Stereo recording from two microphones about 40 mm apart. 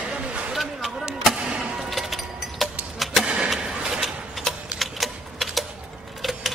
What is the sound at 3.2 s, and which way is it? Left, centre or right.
Skateboard, right.